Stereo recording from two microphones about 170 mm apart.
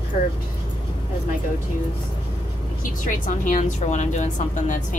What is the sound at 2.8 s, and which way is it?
A woman's voice, 50° left (ahead or behind).